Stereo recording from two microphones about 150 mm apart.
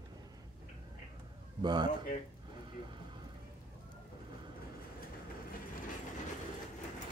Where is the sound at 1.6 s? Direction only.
30° right (ahead or behind).